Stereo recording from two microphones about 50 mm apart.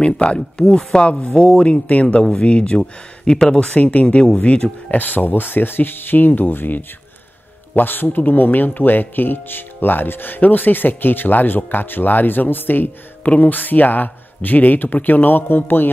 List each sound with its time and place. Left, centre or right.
0.0 s speech: left
1.6 s speech: left
3.7 s speech: left
4.9 s speech: left
13.2 s speech: left
13.5 s speech: left